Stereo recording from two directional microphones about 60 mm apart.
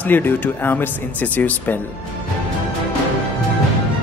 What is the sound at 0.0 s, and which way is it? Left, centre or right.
Speech, left.